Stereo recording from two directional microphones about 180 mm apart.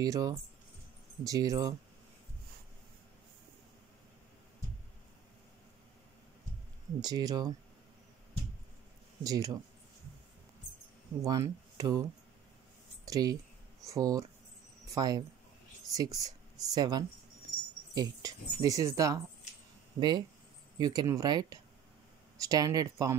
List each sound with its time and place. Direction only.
0.0 s speech: 20° right (ahead or behind)
7.0 s speech: 20° right (ahead or behind)
9.2 s speech: 20° right (ahead or behind)
11.2 s speech: 20° right (ahead or behind)
13.1 s speech: 20° right (ahead or behind)